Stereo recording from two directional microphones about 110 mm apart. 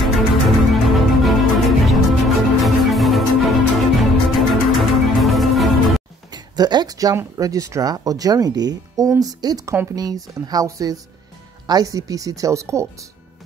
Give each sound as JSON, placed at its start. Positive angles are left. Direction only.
{"t": 0.0, "sound": "music", "side_deg": 0}
{"t": 6.3, "sound": "speech", "side_deg": -40}